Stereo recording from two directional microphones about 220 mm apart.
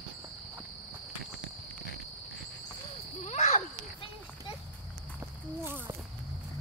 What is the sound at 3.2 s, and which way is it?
Insect, 30° left (ahead or behind).